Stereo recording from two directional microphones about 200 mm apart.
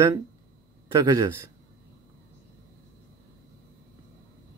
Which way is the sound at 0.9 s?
15° right (ahead or behind).